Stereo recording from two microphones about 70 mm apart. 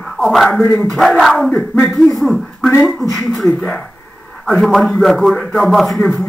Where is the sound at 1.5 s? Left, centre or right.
Left.